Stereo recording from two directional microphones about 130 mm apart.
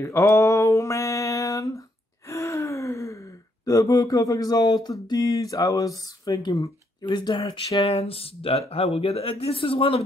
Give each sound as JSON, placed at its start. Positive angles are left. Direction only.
{"t": 0.0, "sound": "a sound", "side_deg": 25}
{"t": 2.2, "sound": "gasp", "side_deg": 20}
{"t": 3.6, "sound": "speech", "side_deg": 25}